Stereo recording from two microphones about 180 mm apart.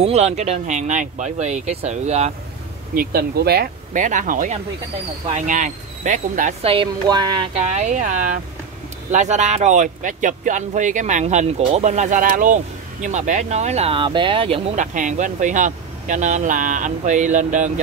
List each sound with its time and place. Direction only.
0.0 s speech: 35° right (ahead or behind)
2.9 s speech: 55° right (ahead or behind)
6.7 s speech: 25° right (ahead or behind)
7.5 s speech: 40° right (ahead or behind)
14.8 s speech: 45° right (ahead or behind)